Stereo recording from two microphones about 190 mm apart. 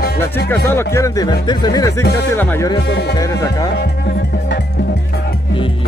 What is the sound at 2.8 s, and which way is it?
Speech, 65° left (ahead or behind).